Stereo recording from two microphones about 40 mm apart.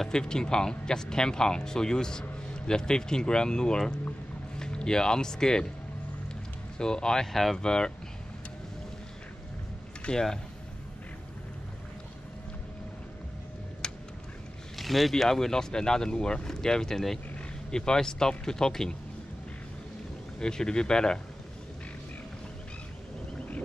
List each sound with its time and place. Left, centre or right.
0.1 s speech: centre
6.8 s speech: centre
10.1 s speech: left
13.8 s a sound: centre
14.8 s speech: centre
20.3 s speech: centre